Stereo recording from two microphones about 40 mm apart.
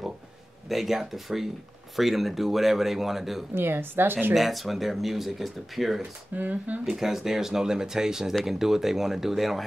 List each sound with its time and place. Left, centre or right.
0.7 s speech: centre
3.5 s speech: right
4.3 s speech: centre
6.3 s speech: right
6.9 s speech: centre